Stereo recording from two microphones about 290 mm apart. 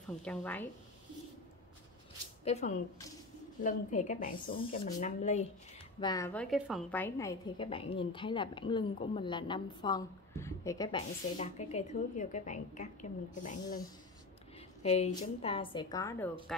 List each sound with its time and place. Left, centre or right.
0.2 s a woman's voice: centre
2.4 s a woman's voice: left
5.9 s a woman's voice: centre
14.8 s a woman's voice: left; by 16.6 s centre